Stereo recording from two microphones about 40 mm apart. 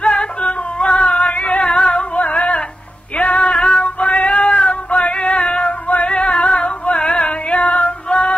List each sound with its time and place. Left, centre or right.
0.0 s singing: left
0.9 s music: centre
1.3 s music: left
1.6 s singing: centre
1.9 s singing: left
3.2 s music: left
3.8 s music: left
4.5 s female singing: left
5.5 s music: left
6.3 s singing: left
6.6 s a sound: left
7.4 s music: left
7.8 s music: left